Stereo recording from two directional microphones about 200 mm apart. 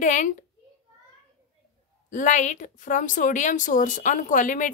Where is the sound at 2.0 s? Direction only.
40° left (ahead or behind).